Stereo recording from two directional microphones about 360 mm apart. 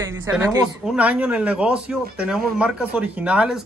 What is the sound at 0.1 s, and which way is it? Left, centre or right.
Speech, centre.